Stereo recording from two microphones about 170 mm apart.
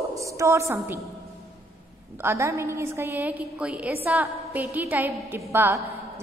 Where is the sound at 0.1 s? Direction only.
20° right (ahead or behind).